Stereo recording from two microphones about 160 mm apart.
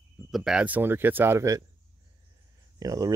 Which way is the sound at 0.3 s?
5° right (ahead or behind).